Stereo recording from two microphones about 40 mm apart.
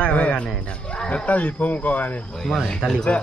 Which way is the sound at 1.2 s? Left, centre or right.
Left.